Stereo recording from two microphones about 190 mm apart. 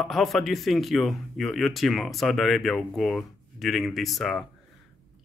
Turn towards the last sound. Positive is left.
turn(degrees=0)  # may be behind; listen again after turning